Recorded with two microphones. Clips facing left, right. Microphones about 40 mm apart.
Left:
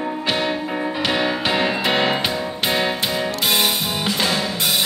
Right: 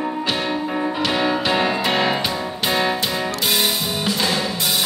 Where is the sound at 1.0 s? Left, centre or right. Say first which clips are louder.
Even; centre.